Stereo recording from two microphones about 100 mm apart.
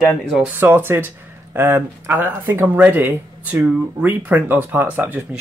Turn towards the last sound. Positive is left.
turn(degrees=-20)  # may be behind; listen again after turning